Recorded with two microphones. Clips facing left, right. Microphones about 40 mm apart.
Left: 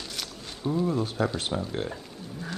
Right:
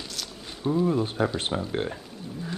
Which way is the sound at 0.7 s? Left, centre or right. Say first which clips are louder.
Right 3 dB; centre.